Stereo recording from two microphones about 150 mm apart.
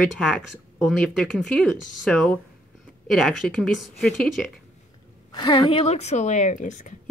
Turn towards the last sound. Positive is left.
turn(degrees=55)  # may be behind; listen again after turning